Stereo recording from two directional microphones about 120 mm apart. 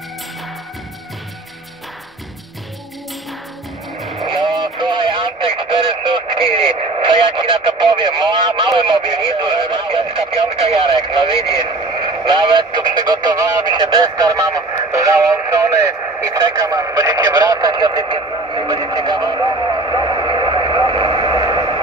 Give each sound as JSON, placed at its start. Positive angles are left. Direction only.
{"t": 4.0, "sound": "music", "side_deg": 0}
{"t": 4.3, "sound": "radio", "side_deg": -40}